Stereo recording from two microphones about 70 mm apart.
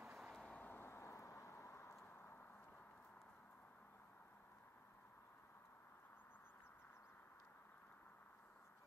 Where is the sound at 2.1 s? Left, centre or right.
Left.